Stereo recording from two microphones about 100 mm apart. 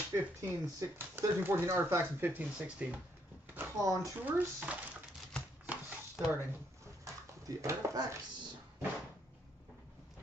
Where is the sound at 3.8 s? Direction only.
30° right (ahead or behind).